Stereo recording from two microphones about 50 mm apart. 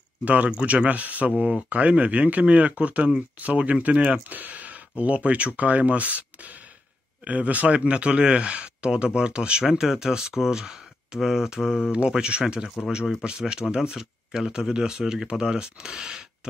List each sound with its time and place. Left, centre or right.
0.2 s speech: right; by 11.9 s centre
12.1 s speech: centre